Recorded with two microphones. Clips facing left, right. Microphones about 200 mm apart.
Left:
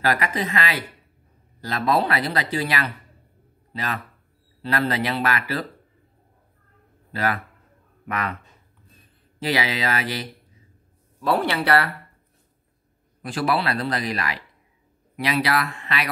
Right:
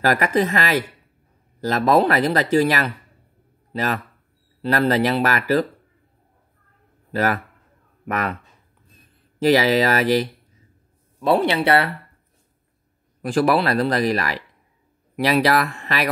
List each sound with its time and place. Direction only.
0.0 s speech: 45° right (ahead or behind)
8.1 s speech: 40° right (ahead or behind)
9.4 s speech: 40° right (ahead or behind)
11.1 s speech: 20° right (ahead or behind)
13.2 s speech: 45° right (ahead or behind)